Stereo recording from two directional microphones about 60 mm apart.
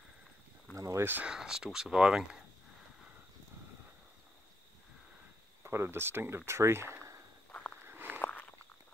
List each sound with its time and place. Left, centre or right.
0.7 s a sound: right
1.2 s speech: centre
5.6 s speech: right
7.8 s walk: right
8.2 s walk: left